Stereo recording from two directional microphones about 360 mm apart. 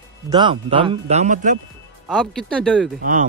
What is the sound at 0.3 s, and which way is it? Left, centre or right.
Speech, centre.